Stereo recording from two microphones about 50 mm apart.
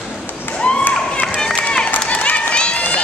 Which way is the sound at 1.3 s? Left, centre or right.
Centre.